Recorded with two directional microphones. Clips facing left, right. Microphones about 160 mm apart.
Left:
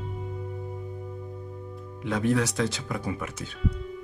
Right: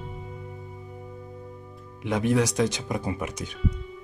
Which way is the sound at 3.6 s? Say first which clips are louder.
Left 1 dB; centre (ahead or behind).